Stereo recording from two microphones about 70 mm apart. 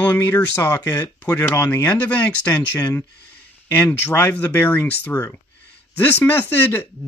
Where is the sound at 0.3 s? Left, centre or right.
Left.